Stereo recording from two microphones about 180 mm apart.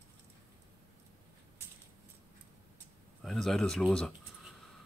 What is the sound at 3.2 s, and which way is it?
Speech, centre (ahead or behind).